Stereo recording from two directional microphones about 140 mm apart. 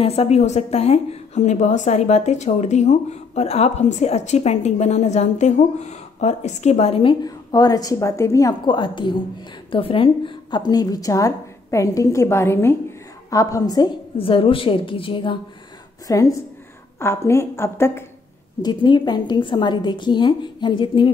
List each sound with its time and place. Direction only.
0.0 s a woman's voice: 45° left (ahead or behind); by 8.5 s 25° left (ahead or behind)
8.6 s a woman's voice: 35° left (ahead or behind)
14.1 s a woman's voice: 40° left (ahead or behind)
16.1 s a woman's voice: 25° left (ahead or behind)
18.6 s a woman's voice: 30° left (ahead or behind)